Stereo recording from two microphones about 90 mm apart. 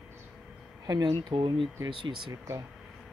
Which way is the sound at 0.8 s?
50° right (ahead or behind).